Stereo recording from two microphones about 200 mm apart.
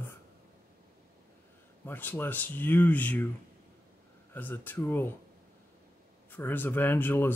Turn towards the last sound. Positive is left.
turn(degrees=10)  # may be behind; listen again after turning